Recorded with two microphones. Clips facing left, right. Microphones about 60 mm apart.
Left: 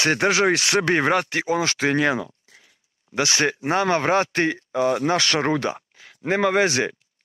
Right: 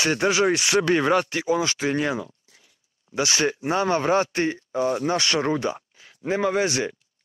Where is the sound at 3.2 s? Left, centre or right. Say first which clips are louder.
Left 1 dB; left.